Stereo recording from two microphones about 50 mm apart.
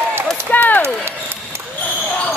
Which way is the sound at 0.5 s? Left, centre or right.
Left.